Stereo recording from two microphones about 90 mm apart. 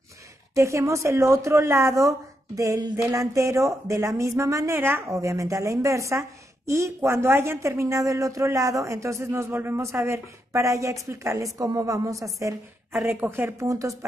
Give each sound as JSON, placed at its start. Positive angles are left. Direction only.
{"t": 0.6, "sound": "a woman's voice", "side_deg": -35}
{"t": 5.1, "sound": "a woman's voice", "side_deg": -35}
{"t": 12.9, "sound": "a woman's voice", "side_deg": -20}
{"t": 13.6, "sound": "a woman's voice", "side_deg": -35}